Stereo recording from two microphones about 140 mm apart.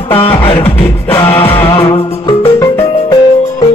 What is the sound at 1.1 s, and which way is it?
Music, 15° left (ahead or behind).